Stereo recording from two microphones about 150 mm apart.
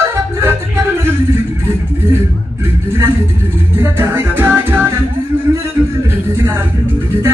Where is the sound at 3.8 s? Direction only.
15° right (ahead or behind).